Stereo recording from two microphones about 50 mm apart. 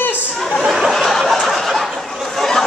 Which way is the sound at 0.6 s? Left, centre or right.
Centre.